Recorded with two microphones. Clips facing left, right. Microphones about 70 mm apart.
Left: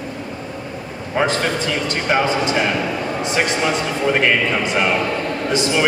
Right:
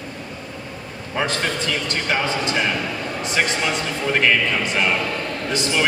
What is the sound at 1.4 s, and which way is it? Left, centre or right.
A man's voice, centre.